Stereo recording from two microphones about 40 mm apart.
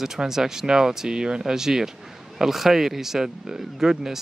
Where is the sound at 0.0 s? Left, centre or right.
Centre.